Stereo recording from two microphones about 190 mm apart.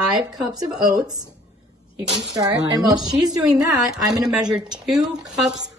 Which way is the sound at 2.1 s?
Centre (ahead or behind).